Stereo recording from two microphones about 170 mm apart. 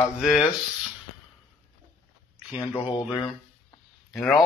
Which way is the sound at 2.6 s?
25° left (ahead or behind).